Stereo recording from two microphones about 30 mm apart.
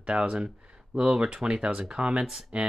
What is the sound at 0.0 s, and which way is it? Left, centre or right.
Speech, right.